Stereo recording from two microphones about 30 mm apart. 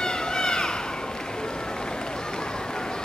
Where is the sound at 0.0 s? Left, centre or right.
Left.